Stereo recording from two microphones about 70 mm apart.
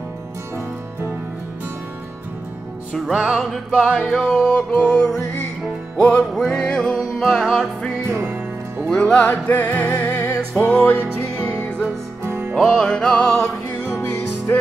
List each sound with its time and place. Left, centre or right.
3.1 s music: centre
3.3 s music: centre
4.4 s music: centre
6.3 s music: centre
7.0 s music: centre
8.1 s music: right
8.8 s music: centre
9.2 s music: left
10.1 s music: left
10.6 s music: centre
12.3 s music: right
12.7 s music: centre
14.5 s music: left